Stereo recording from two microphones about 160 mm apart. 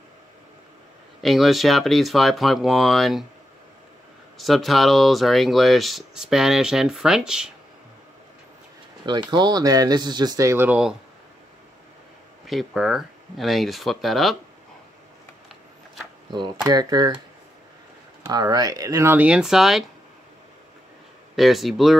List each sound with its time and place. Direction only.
1.2 s speech: centre (ahead or behind)
4.4 s speech: centre (ahead or behind)
9.0 s speech: 30° right (ahead or behind); by 11.0 s 10° right (ahead or behind)
12.4 s speech: centre (ahead or behind)
16.3 s speech: 30° right (ahead or behind)
18.2 s speech: 25° right (ahead or behind); by 19.8 s centre (ahead or behind)
21.4 s speech: centre (ahead or behind)